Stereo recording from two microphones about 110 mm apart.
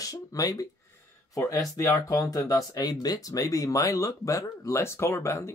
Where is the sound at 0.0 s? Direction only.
30° left (ahead or behind).